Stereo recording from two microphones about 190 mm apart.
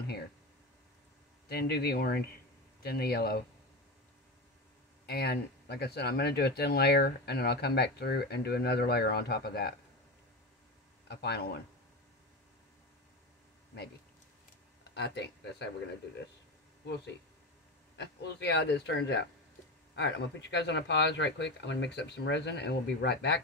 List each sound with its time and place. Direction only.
1.5 s speech: 55° left (ahead or behind)
5.0 s speech: 55° left (ahead or behind)
11.1 s speech: 60° left (ahead or behind)
15.0 s speech: 60° left (ahead or behind)
17.9 s speech: 60° left (ahead or behind)